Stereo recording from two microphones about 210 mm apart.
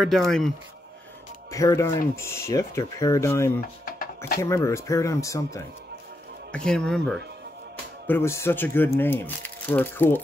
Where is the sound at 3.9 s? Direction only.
45° left (ahead or behind).